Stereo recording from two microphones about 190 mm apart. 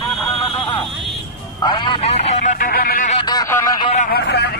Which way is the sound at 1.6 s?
25° left (ahead or behind).